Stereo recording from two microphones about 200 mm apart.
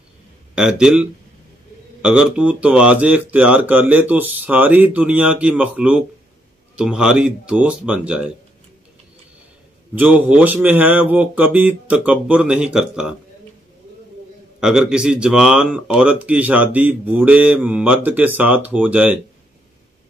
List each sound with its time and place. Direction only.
0.6 s speech: 5° right (ahead or behind)
9.9 s speech: 5° right (ahead or behind)
14.6 s speech: 5° right (ahead or behind)